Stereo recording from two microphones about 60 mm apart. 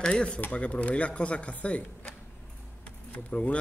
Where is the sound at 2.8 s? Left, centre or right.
Left.